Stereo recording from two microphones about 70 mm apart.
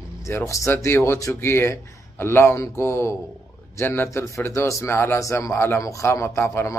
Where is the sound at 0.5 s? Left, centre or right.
Left.